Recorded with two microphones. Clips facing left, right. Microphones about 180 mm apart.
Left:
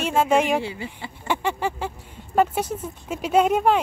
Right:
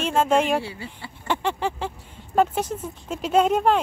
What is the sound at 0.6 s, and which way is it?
Speech, 20° left (ahead or behind).